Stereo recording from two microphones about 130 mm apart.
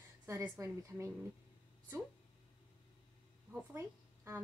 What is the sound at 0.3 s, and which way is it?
Speech, 20° right (ahead or behind).